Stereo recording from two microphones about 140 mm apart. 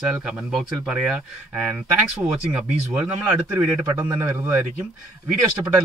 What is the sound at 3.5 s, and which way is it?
A man's voice, 5° right (ahead or behind).